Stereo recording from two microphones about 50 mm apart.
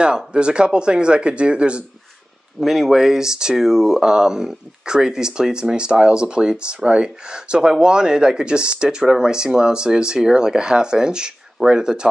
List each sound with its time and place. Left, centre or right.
0.0 s speech: centre
2.6 s speech: centre